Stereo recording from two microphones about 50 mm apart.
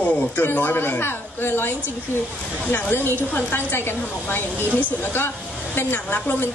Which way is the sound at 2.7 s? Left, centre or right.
Left.